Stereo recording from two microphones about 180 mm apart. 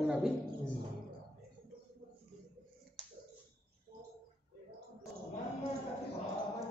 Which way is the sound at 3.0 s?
25° right (ahead or behind).